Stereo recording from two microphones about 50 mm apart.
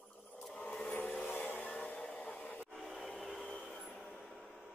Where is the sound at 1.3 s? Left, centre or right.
Left.